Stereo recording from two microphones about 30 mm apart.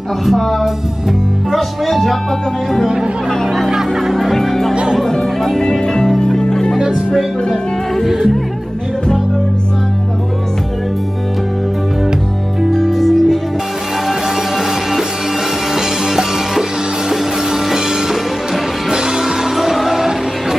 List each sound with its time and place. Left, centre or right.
0.2 s speech: centre
3.4 s music: centre
3.7 s music: centre
4.1 s speech: centre
4.9 s music: centre
12.9 s music: centre
15.7 s music: centre
18.9 s music: centre
19.5 s music: centre